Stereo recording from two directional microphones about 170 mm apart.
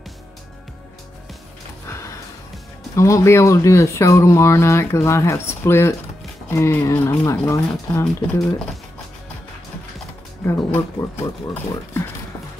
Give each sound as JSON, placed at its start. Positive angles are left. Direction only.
{"t": 3.0, "sound": "speech", "side_deg": 15}
{"t": 10.4, "sound": "speech", "side_deg": 15}